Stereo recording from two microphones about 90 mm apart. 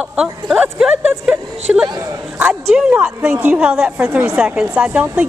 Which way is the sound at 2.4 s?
10° right (ahead or behind).